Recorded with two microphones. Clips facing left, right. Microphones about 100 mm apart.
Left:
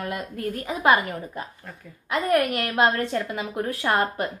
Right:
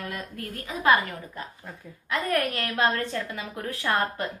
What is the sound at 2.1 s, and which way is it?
A woman's voice, 20° left (ahead or behind).